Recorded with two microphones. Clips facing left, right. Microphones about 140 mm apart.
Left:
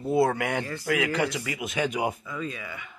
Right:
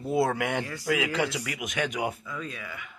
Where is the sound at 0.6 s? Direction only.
10° right (ahead or behind).